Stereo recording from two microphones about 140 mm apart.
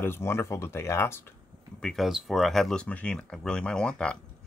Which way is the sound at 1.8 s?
5° left (ahead or behind).